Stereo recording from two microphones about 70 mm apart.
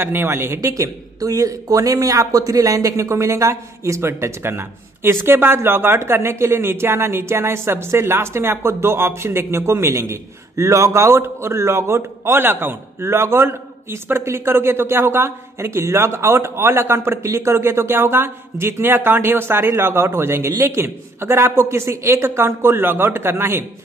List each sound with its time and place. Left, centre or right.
0.0 s speech: right
0.6 s speech: right